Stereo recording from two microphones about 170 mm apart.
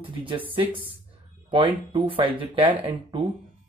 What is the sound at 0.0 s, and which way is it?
Speech, 30° right (ahead or behind).